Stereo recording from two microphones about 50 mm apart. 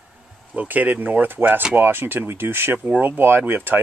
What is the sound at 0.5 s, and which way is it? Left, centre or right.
Speech, right.